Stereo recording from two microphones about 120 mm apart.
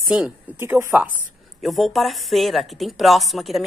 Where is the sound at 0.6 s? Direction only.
20° right (ahead or behind).